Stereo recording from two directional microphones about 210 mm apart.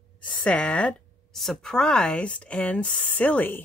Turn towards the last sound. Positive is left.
turn(degrees=10)  # may be behind; listen again after turning